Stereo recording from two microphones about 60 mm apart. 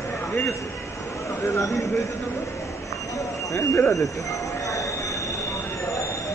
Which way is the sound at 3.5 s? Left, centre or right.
Left.